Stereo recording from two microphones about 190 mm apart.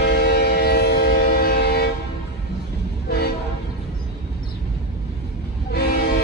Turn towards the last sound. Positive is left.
turn(degrees=60)  # may be behind; listen again after turning